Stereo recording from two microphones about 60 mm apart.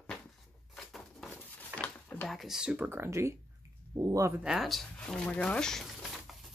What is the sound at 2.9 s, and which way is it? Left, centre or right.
Speech, right.